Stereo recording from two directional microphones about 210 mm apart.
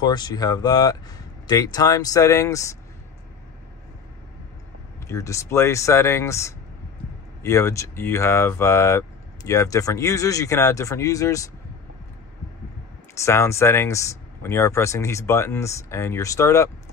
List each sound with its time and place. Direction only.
0.0 s speech: 20° left (ahead or behind)
5.0 s speech: 15° left (ahead or behind)
13.2 s speech: 15° left (ahead or behind)